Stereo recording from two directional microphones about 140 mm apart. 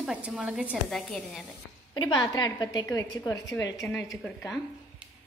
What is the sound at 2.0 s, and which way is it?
A woman's voice, 30° left (ahead or behind).